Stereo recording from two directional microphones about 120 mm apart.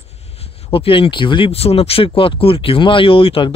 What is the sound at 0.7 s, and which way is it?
Speech, 50° left (ahead or behind).